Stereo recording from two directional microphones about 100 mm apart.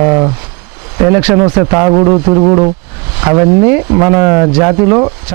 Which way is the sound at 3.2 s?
20° right (ahead or behind).